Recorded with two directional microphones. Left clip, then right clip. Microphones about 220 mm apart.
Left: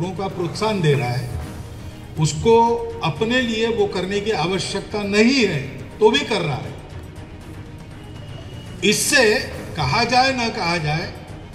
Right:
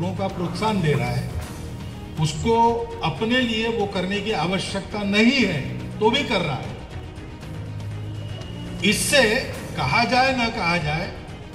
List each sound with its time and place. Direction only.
0.2 s speech: 45° left (ahead or behind)
2.1 s speech: 45° left (ahead or behind)
8.8 s speech: 45° left (ahead or behind)